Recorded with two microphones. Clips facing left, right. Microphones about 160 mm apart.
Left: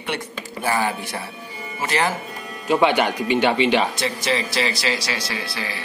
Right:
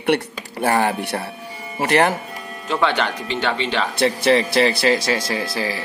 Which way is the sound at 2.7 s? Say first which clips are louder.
Left 3 dB; 15° left (ahead or behind).